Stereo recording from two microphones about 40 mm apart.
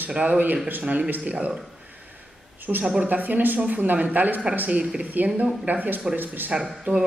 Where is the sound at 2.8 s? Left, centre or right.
Right.